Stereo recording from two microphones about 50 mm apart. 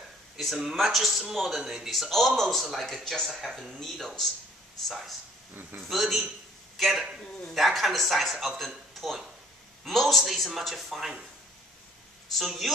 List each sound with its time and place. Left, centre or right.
0.7 s a man's voice: centre
5.5 s a man's voice: right
5.9 s a man's voice: centre
12.4 s a man's voice: centre